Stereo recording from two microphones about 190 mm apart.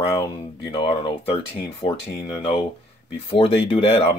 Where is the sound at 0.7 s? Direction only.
25° left (ahead or behind).